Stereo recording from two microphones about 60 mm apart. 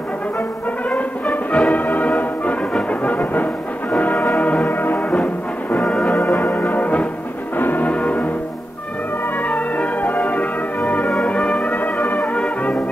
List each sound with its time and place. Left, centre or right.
0.8 s brass instrument: left
1.7 s music: left
6.4 s music: left
9.5 s music: left
12.2 s brass instrument: centre